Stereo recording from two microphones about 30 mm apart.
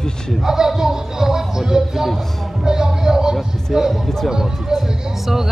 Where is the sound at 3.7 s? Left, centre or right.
Centre.